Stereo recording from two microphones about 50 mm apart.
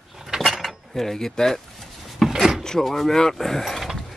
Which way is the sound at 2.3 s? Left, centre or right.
Centre.